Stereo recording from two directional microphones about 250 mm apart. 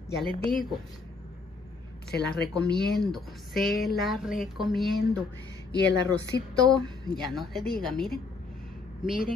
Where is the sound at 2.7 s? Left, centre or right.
Left.